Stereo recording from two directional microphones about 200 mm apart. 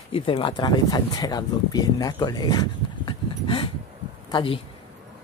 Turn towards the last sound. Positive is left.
turn(degrees=25)  # may be behind; listen again after turning